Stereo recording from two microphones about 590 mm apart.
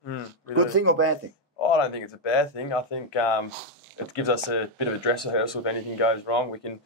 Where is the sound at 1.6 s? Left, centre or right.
Left.